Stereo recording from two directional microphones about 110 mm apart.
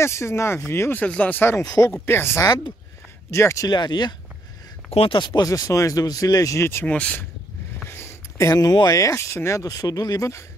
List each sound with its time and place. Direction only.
0.0 s speech: 25° left (ahead or behind)
1.6 s speech: 30° left (ahead or behind)
2.0 s speech: 20° left (ahead or behind)
2.4 s speech: 40° left (ahead or behind)
3.3 s speech: 25° left (ahead or behind)
3.6 s speech: 40° left (ahead or behind)
4.9 s speech: 55° left (ahead or behind)
5.5 s speech: 30° left (ahead or behind)